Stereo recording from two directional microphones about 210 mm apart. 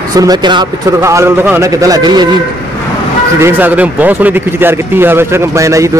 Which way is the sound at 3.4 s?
10° right (ahead or behind).